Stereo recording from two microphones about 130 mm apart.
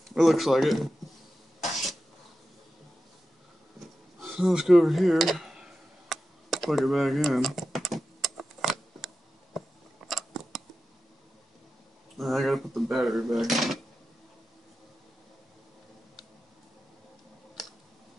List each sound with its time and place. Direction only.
0.1 s speech: centre (ahead or behind)
1.6 s cough: centre (ahead or behind)
4.4 s a sound: centre (ahead or behind)
12.2 s speech: centre (ahead or behind)